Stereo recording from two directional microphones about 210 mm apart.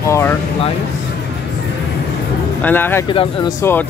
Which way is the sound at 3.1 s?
25° left (ahead or behind).